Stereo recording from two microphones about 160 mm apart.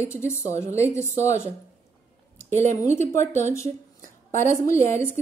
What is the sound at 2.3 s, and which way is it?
Speech, 15° left (ahead or behind).